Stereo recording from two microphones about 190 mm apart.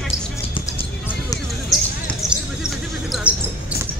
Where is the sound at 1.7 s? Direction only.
Centre (ahead or behind).